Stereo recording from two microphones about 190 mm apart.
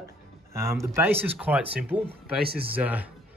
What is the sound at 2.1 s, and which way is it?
Speech, 55° right (ahead or behind).